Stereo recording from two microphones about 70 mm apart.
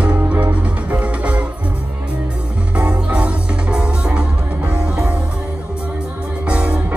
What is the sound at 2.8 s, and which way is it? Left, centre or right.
Music, centre.